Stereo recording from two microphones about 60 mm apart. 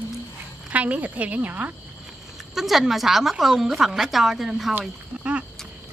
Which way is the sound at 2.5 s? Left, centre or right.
Centre.